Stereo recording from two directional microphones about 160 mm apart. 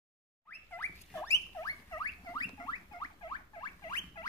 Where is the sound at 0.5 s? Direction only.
15° left (ahead or behind).